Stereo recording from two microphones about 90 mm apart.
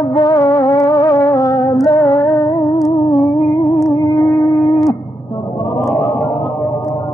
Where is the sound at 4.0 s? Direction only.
40° left (ahead or behind).